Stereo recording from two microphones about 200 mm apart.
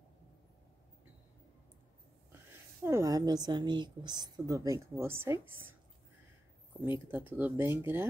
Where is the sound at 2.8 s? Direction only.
15° right (ahead or behind).